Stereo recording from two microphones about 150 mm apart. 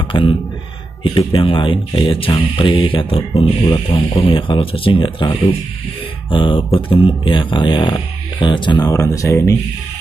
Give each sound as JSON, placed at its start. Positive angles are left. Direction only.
{"t": 0.1, "sound": "speech", "side_deg": 35}